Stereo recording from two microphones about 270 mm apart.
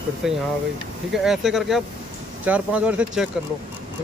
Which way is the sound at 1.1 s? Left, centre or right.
Centre.